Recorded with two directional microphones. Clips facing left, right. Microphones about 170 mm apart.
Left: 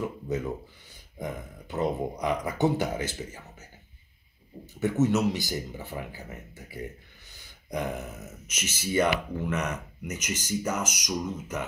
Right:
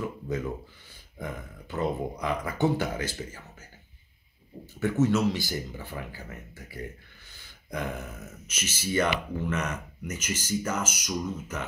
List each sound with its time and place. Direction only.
1.1 s speech: 20° left (ahead or behind)
4.7 s speech: 20° left (ahead or behind)